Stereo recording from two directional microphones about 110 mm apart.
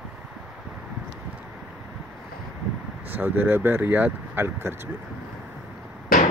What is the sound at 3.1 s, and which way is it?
Speech, 20° right (ahead or behind).